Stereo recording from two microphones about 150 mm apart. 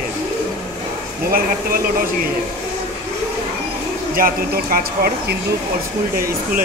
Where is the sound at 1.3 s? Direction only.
80° right.